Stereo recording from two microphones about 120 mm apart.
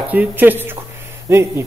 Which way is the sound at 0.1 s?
15° right (ahead or behind).